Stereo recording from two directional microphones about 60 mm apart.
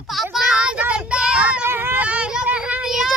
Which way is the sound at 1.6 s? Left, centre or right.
Right.